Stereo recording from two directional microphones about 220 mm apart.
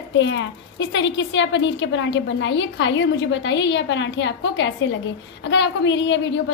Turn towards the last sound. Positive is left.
turn(degrees=55)  # may be behind; listen again after turning